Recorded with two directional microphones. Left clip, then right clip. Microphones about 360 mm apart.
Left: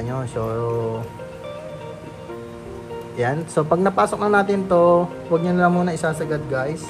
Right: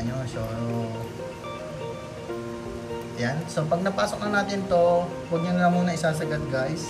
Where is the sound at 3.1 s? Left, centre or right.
Centre.